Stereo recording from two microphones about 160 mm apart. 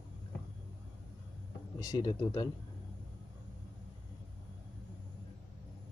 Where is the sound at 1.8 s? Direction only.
25° left (ahead or behind).